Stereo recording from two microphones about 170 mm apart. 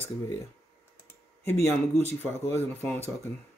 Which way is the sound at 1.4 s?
15° left (ahead or behind).